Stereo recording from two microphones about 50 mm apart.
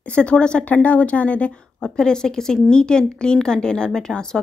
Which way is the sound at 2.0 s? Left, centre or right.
Centre.